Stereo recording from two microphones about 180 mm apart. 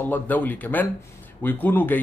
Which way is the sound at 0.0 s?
10° left (ahead or behind).